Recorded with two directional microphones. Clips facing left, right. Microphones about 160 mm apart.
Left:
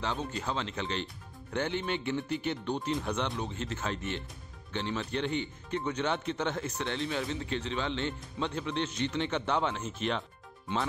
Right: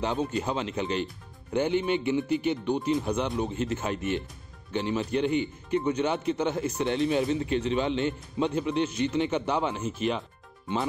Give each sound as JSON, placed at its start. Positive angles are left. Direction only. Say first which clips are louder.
{"t": 0.0, "sound": "speech", "louder": "right 6 dB", "side_deg": -15}